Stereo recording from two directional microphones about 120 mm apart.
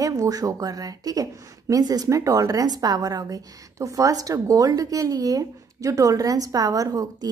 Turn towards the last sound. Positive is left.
turn(degrees=-30)  # may be behind; listen again after turning